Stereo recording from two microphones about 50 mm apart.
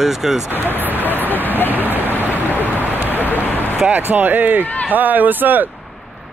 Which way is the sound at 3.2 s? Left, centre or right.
Left.